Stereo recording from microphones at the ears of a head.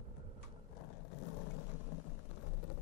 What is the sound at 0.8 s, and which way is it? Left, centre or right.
Vehicle, left.